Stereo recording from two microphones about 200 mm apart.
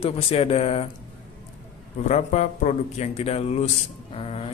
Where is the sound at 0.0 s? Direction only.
30° left (ahead or behind).